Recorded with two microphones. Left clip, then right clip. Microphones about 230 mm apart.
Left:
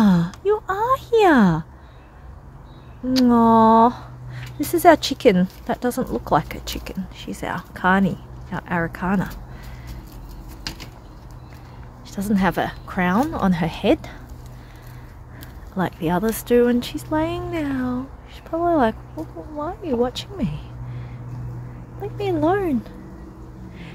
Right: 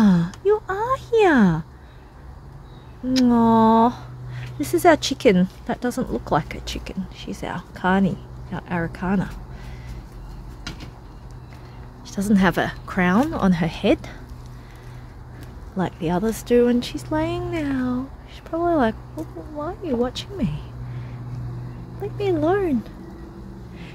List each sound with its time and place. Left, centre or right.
0.0 s a sound: centre
3.1 s speech: centre
12.1 s speech: centre
15.7 s speech: centre
22.0 s speech: centre